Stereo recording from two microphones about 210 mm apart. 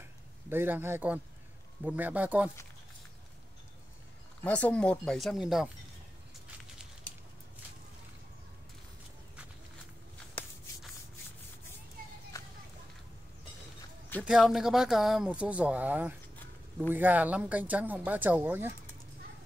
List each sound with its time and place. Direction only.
0.5 s speech: 10° right (ahead or behind)
4.5 s speech: 5° left (ahead or behind)
12.3 s a sound: 15° left (ahead or behind)
14.2 s speech: centre (ahead or behind)